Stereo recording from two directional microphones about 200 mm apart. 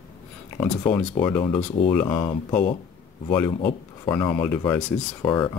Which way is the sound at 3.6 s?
25° left (ahead or behind).